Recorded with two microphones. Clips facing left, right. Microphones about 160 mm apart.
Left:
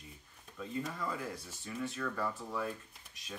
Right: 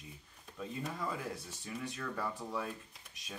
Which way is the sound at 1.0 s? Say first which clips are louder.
Even; 15° right (ahead or behind).